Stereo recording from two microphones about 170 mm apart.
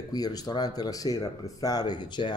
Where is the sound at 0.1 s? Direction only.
20° left (ahead or behind).